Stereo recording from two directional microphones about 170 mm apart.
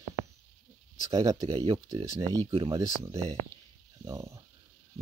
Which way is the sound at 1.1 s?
20° right (ahead or behind).